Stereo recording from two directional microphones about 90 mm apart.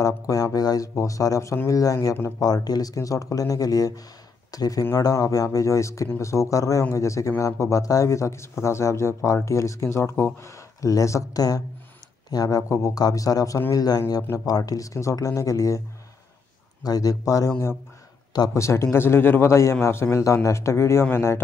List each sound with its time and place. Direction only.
0.0 s speech: 40° left (ahead or behind)
2.1 s speech: 25° left (ahead or behind)
2.4 s speech: 45° left (ahead or behind); by 10.5 s 25° left (ahead or behind)
10.5 s speech: 40° left (ahead or behind)
16.8 s speech: 45° left (ahead or behind); by 21.4 s 30° left (ahead or behind)